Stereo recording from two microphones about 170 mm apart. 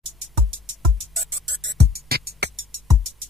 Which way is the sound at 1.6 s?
80° right.